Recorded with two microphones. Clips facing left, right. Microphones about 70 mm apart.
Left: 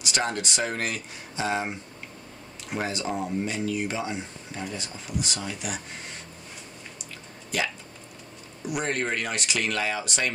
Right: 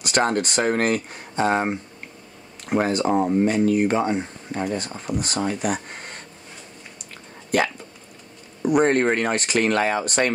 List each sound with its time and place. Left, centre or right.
0.0 s speech: right
7.5 s speech: right